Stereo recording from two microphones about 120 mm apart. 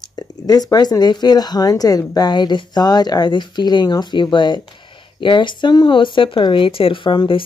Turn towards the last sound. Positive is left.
turn(degrees=45)  # may be behind; listen again after turning